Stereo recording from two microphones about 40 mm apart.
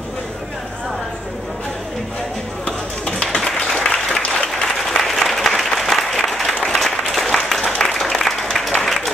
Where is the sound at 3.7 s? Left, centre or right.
Centre.